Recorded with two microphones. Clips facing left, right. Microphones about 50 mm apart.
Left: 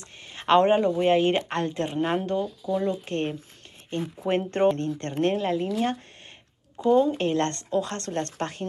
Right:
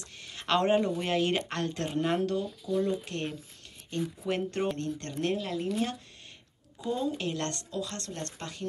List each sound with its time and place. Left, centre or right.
0.0 s speech: left